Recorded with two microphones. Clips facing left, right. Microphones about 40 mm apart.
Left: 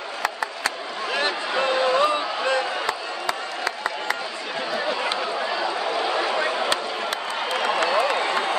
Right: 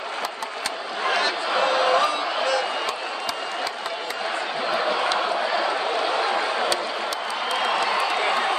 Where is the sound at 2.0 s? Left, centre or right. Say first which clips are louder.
Left 1 dB; left.